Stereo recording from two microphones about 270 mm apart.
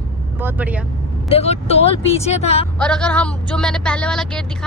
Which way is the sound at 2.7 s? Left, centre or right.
Centre.